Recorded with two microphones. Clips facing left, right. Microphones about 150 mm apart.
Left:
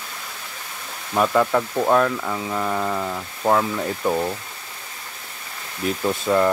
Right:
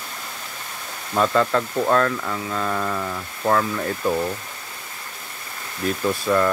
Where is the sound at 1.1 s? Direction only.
10° left (ahead or behind).